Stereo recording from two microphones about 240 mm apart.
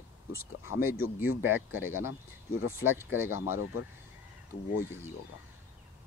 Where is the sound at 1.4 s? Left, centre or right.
Centre.